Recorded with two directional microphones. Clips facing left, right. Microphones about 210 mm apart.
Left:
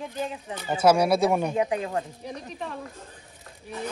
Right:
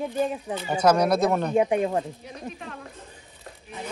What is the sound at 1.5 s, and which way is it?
Speech, 25° right (ahead or behind).